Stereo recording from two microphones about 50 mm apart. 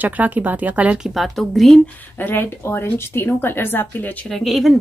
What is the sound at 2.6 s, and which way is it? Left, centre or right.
Speech, left.